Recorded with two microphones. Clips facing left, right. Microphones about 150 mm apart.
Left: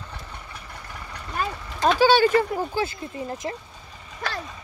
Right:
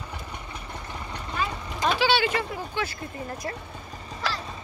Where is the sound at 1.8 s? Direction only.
45° left (ahead or behind).